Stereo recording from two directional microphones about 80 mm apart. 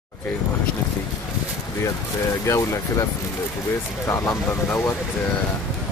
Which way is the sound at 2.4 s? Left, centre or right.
Left.